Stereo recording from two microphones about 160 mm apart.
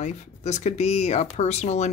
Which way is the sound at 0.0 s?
45° left (ahead or behind).